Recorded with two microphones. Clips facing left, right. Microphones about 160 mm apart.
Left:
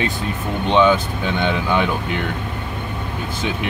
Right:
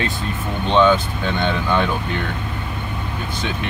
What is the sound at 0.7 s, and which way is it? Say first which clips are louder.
Speech: even; 10° left (ahead or behind).